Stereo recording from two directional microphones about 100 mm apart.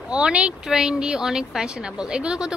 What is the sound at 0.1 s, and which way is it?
Speech, 10° right (ahead or behind).